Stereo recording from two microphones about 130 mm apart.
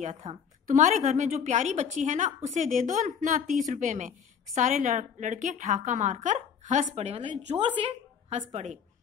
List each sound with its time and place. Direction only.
0.0 s a woman's voice: 55° right (ahead or behind); by 7.9 s 40° right (ahead or behind)
8.3 s a woman's voice: 60° right (ahead or behind)